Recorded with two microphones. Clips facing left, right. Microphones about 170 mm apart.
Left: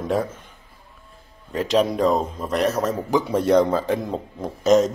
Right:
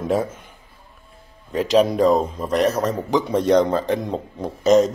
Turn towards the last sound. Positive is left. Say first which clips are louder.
# right 2 dB
turn(degrees=0)  # may be behind; listen again after turning